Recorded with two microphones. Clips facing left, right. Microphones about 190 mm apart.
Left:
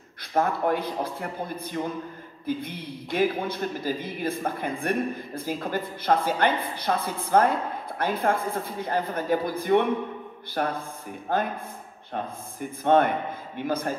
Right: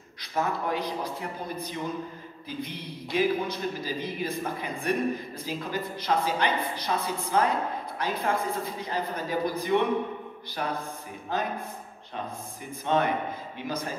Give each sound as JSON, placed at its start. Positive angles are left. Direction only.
{"t": 0.3, "sound": "a man's voice", "side_deg": 50}